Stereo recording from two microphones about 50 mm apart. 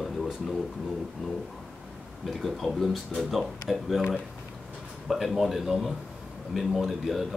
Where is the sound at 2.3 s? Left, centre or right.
Centre.